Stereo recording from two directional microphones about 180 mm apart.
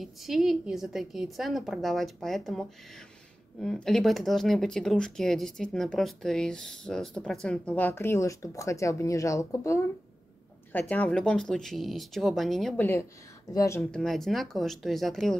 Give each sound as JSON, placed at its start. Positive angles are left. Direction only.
{"t": 0.0, "sound": "speech", "side_deg": 0}
{"t": 13.9, "sound": "speech", "side_deg": 0}